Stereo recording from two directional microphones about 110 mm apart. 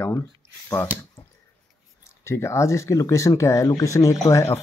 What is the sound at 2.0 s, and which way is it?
Speech, 25° left (ahead or behind).